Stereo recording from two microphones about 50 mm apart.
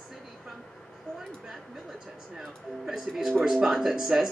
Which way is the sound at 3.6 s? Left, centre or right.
Centre.